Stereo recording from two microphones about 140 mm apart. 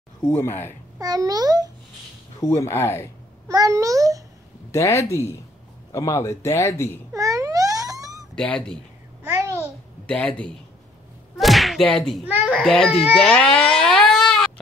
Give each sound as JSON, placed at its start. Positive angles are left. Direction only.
{"t": 0.2, "sound": "speech", "side_deg": 15}
{"t": 0.9, "sound": "a child's voice", "side_deg": -25}
{"t": 2.4, "sound": "a man's voice", "side_deg": 20}
{"t": 3.4, "sound": "a sound", "side_deg": -25}
{"t": 4.7, "sound": "a man's voice", "side_deg": 20}
{"t": 7.1, "sound": "babbling", "side_deg": -20}
{"t": 8.4, "sound": "speech", "side_deg": 5}
{"t": 9.2, "sound": "babbling", "side_deg": -20}
{"t": 10.0, "sound": "a child's voice", "side_deg": 10}
{"t": 13.0, "sound": "a sound", "side_deg": 0}